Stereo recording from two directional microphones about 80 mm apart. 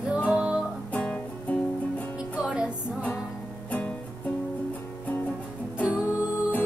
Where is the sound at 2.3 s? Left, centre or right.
Centre.